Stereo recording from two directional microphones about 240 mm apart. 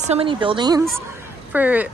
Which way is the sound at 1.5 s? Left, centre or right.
Centre.